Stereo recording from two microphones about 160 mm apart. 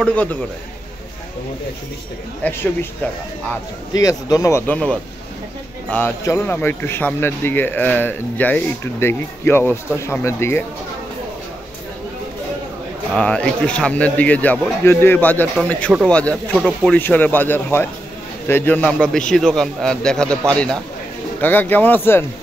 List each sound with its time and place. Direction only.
0.0 s a man's voice: 10° left (ahead or behind)
2.4 s a man's voice: 15° left (ahead or behind)
4.0 s speech: 20° left (ahead or behind)
5.9 s a man's voice: 10° left (ahead or behind)
13.1 s a man's voice: 5° left (ahead or behind)